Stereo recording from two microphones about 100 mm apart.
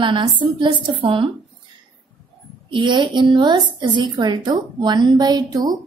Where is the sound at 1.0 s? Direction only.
65° right (ahead or behind).